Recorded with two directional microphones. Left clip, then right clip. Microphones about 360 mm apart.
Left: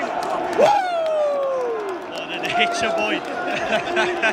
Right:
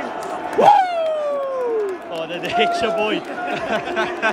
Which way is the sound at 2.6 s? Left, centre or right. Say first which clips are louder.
Right 2 dB; centre.